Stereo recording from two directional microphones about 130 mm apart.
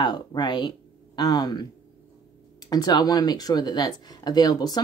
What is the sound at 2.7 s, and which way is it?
Speech, 30° left (ahead or behind).